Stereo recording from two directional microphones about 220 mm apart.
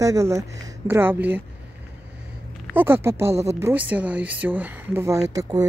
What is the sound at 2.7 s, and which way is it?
Speech, 10° right (ahead or behind).